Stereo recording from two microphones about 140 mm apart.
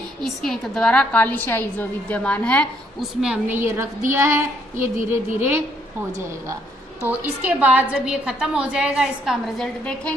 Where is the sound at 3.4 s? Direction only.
15° right (ahead or behind).